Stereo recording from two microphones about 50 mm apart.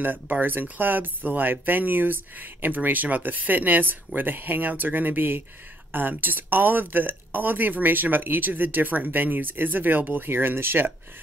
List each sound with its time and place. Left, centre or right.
0.0 s speech: right